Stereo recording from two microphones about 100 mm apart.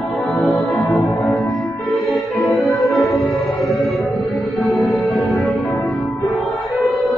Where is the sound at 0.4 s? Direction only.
Centre (ahead or behind).